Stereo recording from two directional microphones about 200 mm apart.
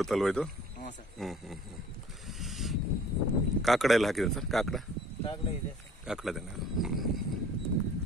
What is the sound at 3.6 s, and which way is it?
Speech, centre (ahead or behind).